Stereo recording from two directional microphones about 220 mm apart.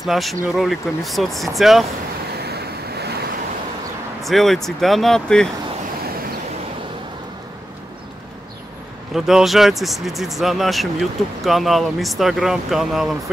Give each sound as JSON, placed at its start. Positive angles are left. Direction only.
{"t": 0.0, "sound": "speech", "side_deg": 0}
{"t": 2.4, "sound": "waves", "side_deg": -45}
{"t": 4.2, "sound": "speech", "side_deg": 0}
{"t": 9.1, "sound": "speech", "side_deg": 0}